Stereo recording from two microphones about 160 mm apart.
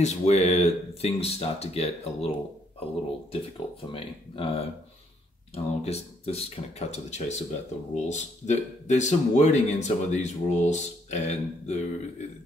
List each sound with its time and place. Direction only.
0.0 s speech: 45° left (ahead or behind)